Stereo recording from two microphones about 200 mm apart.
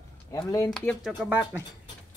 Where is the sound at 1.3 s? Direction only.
10° right (ahead or behind).